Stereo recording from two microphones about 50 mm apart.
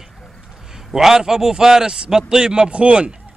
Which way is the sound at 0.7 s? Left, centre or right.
Centre.